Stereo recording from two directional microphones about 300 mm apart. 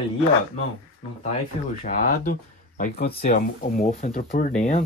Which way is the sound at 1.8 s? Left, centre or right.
Left.